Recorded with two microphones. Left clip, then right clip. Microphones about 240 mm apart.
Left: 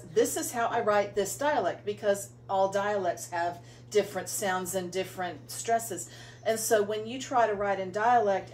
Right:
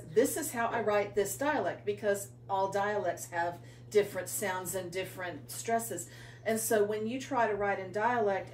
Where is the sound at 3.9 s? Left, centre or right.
Centre.